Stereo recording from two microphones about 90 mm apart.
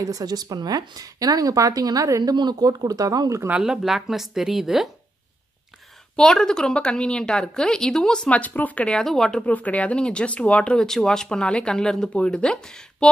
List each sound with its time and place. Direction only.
0.0 s speech: 45° right (ahead or behind)
3.4 s speech: 10° right (ahead or behind)
6.1 s speech: 10° left (ahead or behind)
8.8 s speech: 5° left (ahead or behind)
9.5 s speech: 15° left (ahead or behind)